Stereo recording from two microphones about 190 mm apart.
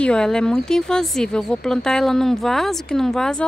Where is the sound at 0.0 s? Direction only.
5° left (ahead or behind).